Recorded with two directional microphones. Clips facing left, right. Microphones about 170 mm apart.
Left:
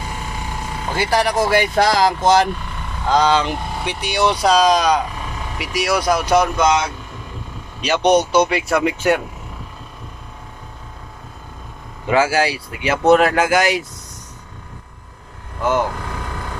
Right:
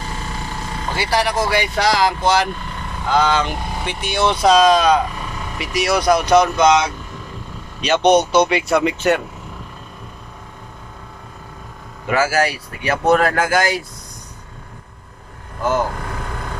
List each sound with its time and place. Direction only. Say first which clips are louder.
0.0 s vehicle: even; 10° left (ahead or behind)
0.9 s speech: left 2 dB; 45° left (ahead or behind)
3.8 s speech: even; 15° left (ahead or behind)
12.1 s speech: left 1 dB; 20° left (ahead or behind)